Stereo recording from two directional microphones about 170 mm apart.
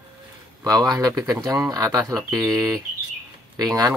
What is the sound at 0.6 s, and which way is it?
Speech, 20° right (ahead or behind).